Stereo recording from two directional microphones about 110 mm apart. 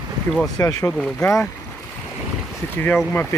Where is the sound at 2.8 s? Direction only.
15° left (ahead or behind).